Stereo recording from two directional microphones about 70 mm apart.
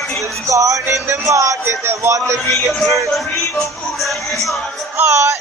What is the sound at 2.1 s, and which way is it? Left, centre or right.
Music, right.